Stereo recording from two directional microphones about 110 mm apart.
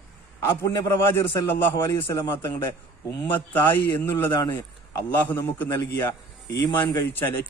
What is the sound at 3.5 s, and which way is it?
A man's voice, 20° left (ahead or behind).